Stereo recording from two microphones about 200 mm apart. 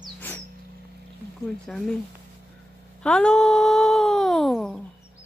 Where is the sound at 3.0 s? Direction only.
5° left (ahead or behind).